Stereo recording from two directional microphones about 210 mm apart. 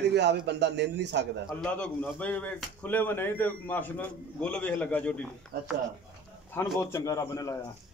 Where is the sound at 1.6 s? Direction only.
5° left (ahead or behind).